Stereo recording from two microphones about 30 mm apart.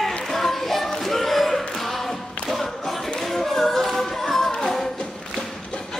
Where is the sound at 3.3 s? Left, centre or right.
Centre.